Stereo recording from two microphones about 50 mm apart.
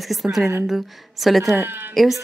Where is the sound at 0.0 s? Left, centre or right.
Centre.